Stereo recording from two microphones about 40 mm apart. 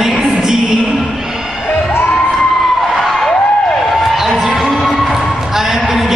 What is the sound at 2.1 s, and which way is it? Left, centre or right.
Crowd, centre.